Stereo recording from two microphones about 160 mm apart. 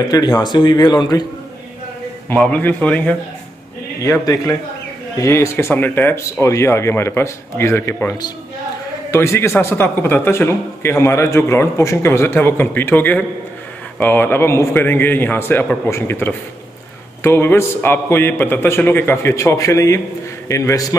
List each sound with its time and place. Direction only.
0.1 s speech: 25° left (ahead or behind)
2.2 s a man's voice: 10° left (ahead or behind)
4.0 s a man's voice: 20° left (ahead or behind)